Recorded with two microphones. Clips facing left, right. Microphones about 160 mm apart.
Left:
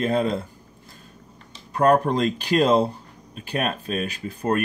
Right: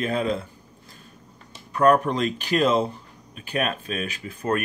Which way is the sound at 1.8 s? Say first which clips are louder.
Left 1 dB; 35° left (ahead or behind).